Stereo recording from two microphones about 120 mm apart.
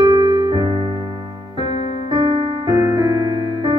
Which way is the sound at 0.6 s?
30° right (ahead or behind).